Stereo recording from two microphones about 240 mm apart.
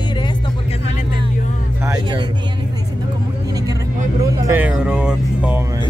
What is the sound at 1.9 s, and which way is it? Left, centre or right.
Vehicle, centre.